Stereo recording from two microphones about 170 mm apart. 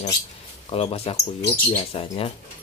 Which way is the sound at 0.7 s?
35° left (ahead or behind).